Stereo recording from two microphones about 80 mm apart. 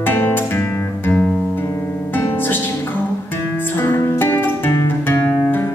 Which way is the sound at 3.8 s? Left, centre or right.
Left.